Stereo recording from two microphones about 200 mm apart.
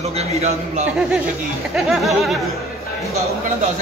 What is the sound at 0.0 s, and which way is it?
Speech, 30° right (ahead or behind).